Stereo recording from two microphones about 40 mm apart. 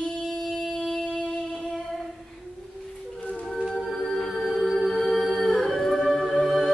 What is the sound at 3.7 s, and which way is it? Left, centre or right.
Music, centre.